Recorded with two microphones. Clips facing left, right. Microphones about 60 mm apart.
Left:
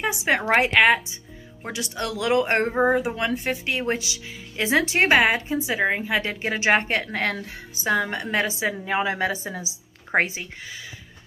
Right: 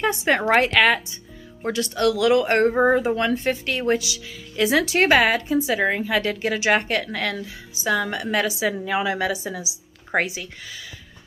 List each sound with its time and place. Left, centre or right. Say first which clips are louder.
0.0 s a woman's voice: right 2 dB; centre
2.7 s speech: right 3 dB; centre; by 7.4 s left
7.4 s speech: right 1 dB; left
7.9 s a woman's voice: right 1 dB; left